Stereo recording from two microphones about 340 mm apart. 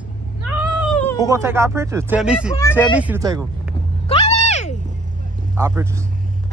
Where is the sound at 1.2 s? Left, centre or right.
Centre.